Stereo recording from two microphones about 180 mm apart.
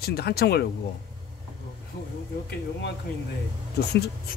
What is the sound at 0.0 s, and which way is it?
Speech, 60° left (ahead or behind).